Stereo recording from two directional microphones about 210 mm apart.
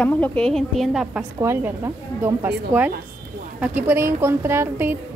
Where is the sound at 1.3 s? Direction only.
15° right (ahead or behind).